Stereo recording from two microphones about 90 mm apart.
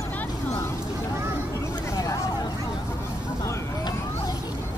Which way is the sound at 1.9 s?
40° left (ahead or behind).